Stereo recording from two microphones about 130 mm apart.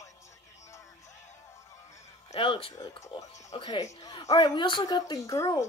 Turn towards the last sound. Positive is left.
turn(degrees=25)  # may be behind; listen again after turning